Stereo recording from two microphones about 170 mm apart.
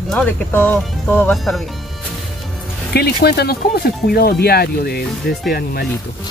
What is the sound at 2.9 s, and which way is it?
Speech, 70° left (ahead or behind).